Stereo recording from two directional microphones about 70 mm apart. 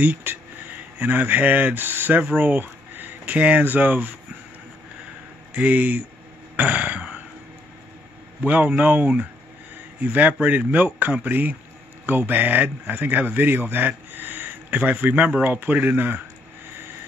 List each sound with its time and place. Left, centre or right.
0.0 s speech: right
5.5 s a man's voice: right
6.5 s a sound: right
8.4 s a man's voice: right